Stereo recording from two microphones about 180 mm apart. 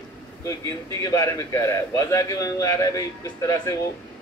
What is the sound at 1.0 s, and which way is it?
A man's voice, 15° left (ahead or behind).